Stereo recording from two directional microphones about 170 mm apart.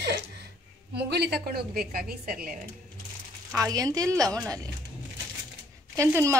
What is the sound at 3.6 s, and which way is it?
Speech, 20° right (ahead or behind).